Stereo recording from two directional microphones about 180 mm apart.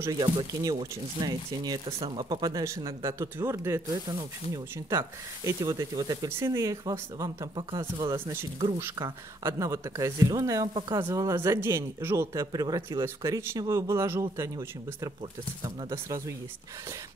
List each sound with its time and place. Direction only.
0.2 s speech: 20° right (ahead or behind)
11.1 s speech: 15° right (ahead or behind)